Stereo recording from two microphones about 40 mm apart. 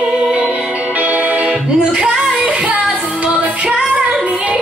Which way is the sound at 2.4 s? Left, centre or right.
Right.